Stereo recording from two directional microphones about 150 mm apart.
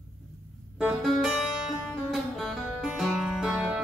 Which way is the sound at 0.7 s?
5° right (ahead or behind).